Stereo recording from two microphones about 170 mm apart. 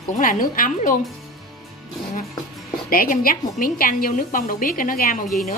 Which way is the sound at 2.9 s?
55° left (ahead or behind).